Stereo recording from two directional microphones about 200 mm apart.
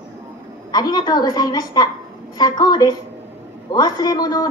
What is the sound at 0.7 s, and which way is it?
Speech, 20° left (ahead or behind).